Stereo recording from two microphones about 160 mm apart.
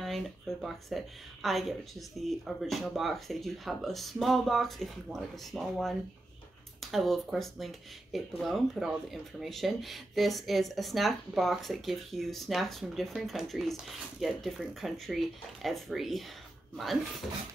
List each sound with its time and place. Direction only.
0.0 s speech: centre (ahead or behind)